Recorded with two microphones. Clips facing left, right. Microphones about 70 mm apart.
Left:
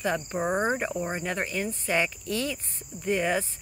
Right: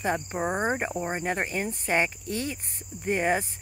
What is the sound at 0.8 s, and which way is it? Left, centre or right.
Speech, right.